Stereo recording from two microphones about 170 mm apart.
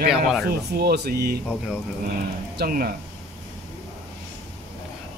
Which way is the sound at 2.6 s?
60° right (ahead or behind).